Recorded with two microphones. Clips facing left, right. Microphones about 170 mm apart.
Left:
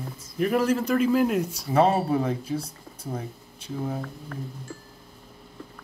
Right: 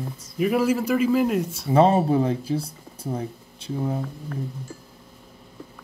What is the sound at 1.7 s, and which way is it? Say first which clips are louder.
Speech: right 3 dB; 35° right (ahead or behind).